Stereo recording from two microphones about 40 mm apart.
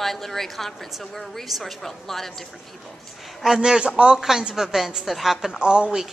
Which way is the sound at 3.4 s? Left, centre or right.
Centre.